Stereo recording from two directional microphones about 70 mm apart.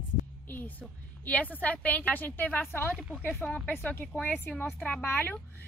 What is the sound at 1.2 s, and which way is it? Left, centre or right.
A woman's voice, left.